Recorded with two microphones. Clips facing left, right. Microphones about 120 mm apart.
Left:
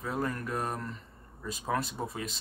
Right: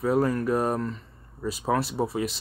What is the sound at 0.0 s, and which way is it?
Speech, 30° right (ahead or behind).